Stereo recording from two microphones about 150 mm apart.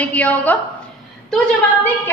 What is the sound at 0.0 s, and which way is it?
Speech, 10° left (ahead or behind).